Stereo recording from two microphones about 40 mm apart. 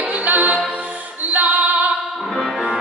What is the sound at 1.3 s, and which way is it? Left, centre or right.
Female singing, right.